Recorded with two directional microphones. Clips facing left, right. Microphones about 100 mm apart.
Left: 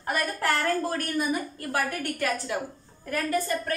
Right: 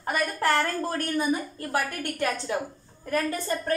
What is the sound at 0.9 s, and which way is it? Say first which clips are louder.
A woman's voice: right 1 dB; 25° right (ahead or behind).